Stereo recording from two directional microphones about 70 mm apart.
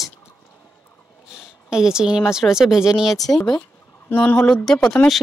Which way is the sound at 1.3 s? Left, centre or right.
Centre.